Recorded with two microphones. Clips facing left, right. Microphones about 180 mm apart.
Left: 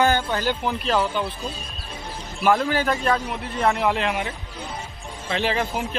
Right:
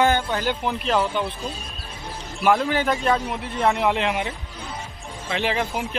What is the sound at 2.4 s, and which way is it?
A man's voice, 15° right (ahead or behind).